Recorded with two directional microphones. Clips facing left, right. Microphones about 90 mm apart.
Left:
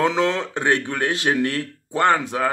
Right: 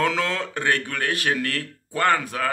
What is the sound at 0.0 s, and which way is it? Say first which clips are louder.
A man's voice: left 4 dB; 20° left (ahead or behind).